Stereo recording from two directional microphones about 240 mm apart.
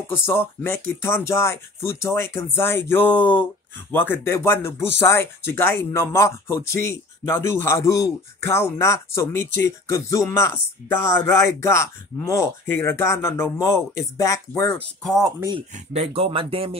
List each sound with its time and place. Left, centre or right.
0.1 s speech: centre
15.7 s speech: right